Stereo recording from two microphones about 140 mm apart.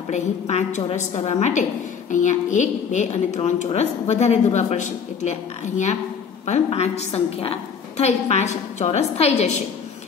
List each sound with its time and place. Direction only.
0.1 s a woman's voice: 55° left (ahead or behind)